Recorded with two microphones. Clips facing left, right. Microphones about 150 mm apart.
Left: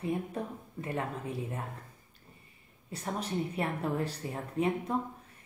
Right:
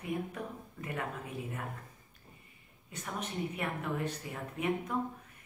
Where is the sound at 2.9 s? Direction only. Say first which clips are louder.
Left 5 dB; 35° left (ahead or behind).